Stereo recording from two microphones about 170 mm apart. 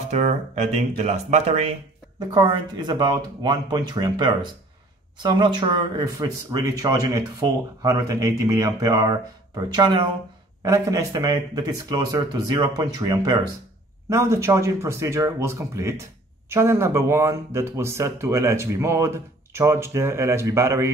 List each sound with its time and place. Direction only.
0.1 s speech: 40° right (ahead or behind)
2.1 s speech: 25° right (ahead or behind)
10.6 s speech: 20° right (ahead or behind)